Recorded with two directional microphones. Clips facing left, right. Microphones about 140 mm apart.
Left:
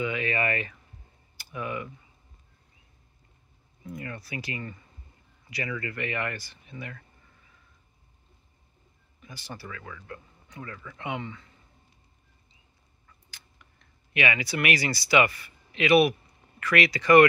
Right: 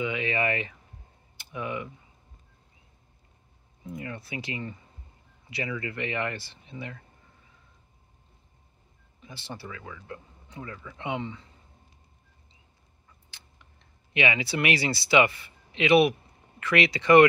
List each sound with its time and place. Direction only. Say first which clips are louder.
0.0 s speech: even; 20° right (ahead or behind)
1.3 s typing: even; 20° right (ahead or behind)
3.8 s speech: right 1 dB; 20° right (ahead or behind)
9.2 s speech: right 1 dB; 25° right (ahead or behind)
11.0 s speech: right 2 dB; 25° right (ahead or behind)
13.3 s speech: even; 25° right (ahead or behind)